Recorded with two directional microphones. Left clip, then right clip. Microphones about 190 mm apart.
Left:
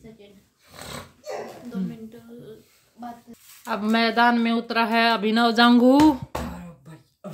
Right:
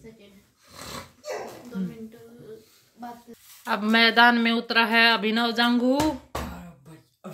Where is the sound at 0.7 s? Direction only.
15° left (ahead or behind).